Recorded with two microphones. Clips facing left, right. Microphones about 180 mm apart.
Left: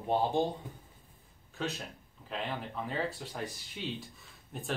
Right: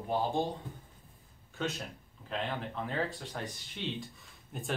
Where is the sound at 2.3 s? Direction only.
5° left (ahead or behind).